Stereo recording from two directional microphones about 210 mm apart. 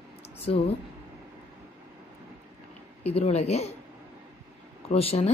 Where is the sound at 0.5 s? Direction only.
25° left (ahead or behind).